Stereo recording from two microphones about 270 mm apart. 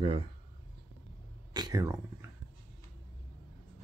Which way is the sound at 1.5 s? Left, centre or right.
Centre.